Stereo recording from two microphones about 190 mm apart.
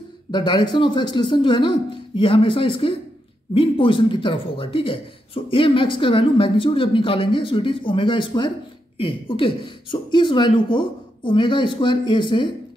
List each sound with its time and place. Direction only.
0.3 s speech: 25° left (ahead or behind)